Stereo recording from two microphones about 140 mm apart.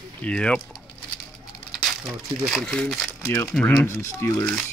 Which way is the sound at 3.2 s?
20° left (ahead or behind).